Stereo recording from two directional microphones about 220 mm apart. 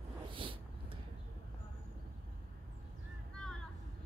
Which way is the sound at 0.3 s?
25° right (ahead or behind).